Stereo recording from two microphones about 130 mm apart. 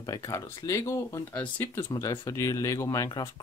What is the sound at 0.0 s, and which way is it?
Speech, 25° left (ahead or behind).